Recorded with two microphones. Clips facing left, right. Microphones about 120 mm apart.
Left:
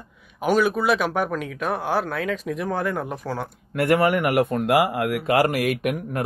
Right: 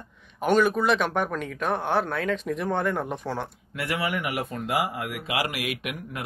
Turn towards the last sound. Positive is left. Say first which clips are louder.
# left 9 dB
turn(degrees=45)  # may be behind; listen again after turning